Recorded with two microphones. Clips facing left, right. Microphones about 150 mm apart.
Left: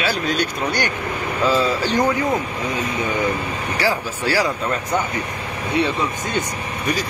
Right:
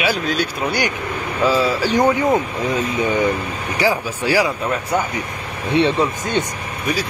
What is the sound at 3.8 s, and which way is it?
Speech, 15° right (ahead or behind).